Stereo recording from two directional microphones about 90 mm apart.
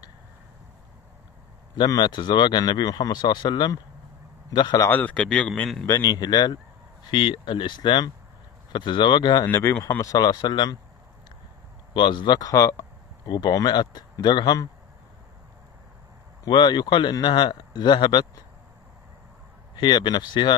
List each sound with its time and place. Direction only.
1.8 s speech: 55° left (ahead or behind)
4.9 s speech: 15° left (ahead or behind)
5.9 s speech: 45° left (ahead or behind)
7.1 s speech: 60° left (ahead or behind)
9.5 s speech: 30° left (ahead or behind); by 10.8 s 55° left (ahead or behind)
11.9 s speech: 60° left (ahead or behind)
14.4 s a man's voice: 40° left (ahead or behind)
16.4 s speech: 55° left (ahead or behind)
19.7 s speech: 55° left (ahead or behind)